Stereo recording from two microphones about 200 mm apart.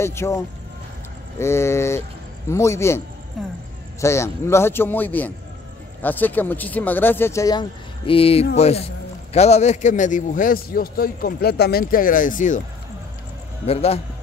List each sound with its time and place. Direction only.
0.0 s speech: 15° left (ahead or behind)
1.4 s speech: 15° left (ahead or behind)
3.4 s speech: centre (ahead or behind)
4.0 s a man's voice: 15° left (ahead or behind); by 12.6 s 40° left (ahead or behind)
13.7 s a man's voice: 30° left (ahead or behind)